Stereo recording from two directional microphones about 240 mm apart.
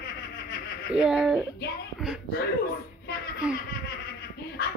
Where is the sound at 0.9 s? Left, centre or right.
Centre.